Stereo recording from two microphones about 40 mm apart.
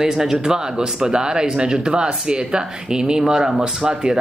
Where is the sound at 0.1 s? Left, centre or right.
Centre.